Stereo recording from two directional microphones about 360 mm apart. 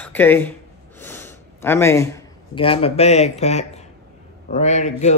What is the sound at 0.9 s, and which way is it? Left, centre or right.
A man's voice, centre.